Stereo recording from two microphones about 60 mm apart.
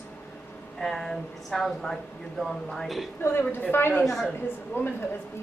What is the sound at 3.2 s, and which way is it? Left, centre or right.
Speech, left.